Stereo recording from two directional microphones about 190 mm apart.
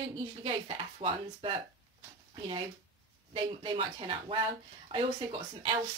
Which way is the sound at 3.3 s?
25° right (ahead or behind).